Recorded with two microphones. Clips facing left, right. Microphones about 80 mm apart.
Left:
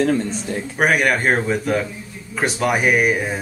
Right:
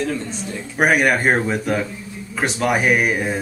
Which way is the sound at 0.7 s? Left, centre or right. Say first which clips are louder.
Right 1 dB; centre.